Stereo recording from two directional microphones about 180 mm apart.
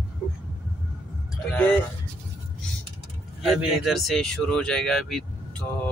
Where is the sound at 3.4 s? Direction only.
5° right (ahead or behind).